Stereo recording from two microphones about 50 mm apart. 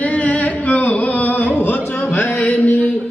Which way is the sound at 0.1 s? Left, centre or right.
Left.